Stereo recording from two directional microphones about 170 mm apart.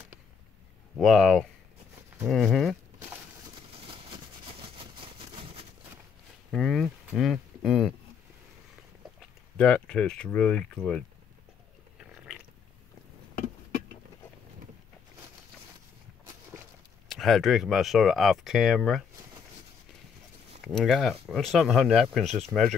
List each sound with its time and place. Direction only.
0.9 s speech: centre (ahead or behind)
3.7 s vehicle: 30° right (ahead or behind)
6.5 s speech: centre (ahead or behind)
9.6 s speech: 5° left (ahead or behind)
12.0 s a sound: 5° right (ahead or behind)
17.1 s speech: centre (ahead or behind)
20.6 s speech: centre (ahead or behind)